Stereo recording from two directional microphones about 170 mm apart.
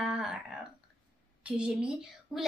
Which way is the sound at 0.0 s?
5° right (ahead or behind).